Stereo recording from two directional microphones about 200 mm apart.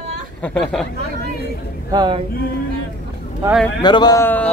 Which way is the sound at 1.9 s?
20° right (ahead or behind).